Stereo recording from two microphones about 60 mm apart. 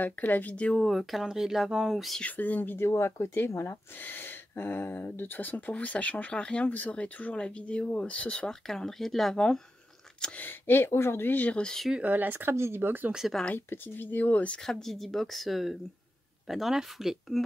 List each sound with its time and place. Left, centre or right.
0.0 s speech: left
0.7 s speech: centre
2.2 s speech: left
2.8 s speech: left
4.0 s speech: left
8.5 s speech: centre
10.3 s speech: left
11.6 s speech: centre
12.0 s speech: right
13.6 s speech: left
14.6 s speech: centre